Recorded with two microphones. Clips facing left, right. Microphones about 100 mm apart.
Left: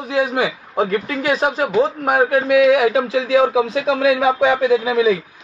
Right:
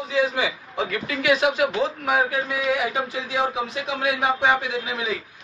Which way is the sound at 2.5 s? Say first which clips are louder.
Left 11 dB; 90° left.